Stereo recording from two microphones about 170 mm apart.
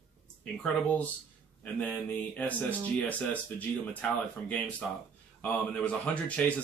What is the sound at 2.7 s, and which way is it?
A man's voice, 10° left (ahead or behind).